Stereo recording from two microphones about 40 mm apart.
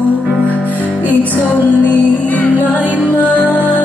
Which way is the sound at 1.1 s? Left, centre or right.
Left.